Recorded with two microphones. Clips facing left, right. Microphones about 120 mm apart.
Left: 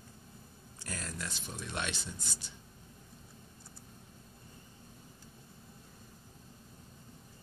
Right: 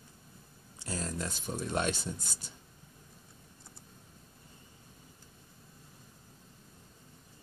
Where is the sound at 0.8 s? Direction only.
30° right (ahead or behind).